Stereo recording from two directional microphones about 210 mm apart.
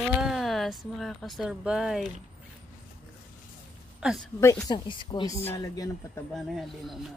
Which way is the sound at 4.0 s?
Centre (ahead or behind).